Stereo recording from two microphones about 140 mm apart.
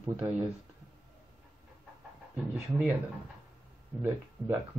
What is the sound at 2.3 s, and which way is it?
Speech, 10° right (ahead or behind).